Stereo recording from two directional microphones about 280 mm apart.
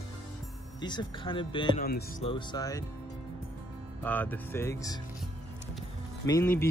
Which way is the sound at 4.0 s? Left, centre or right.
Centre.